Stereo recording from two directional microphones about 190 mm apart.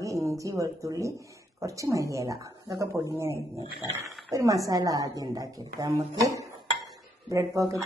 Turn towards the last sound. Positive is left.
turn(degrees=-15)  # may be behind; listen again after turning